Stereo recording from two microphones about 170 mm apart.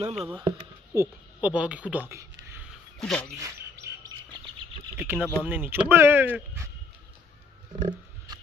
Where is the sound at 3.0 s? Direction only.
5° left (ahead or behind).